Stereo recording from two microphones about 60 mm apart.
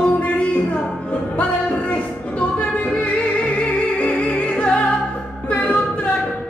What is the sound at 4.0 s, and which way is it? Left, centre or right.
Music, left.